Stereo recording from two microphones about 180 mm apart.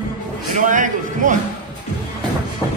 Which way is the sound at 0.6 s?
45° right (ahead or behind).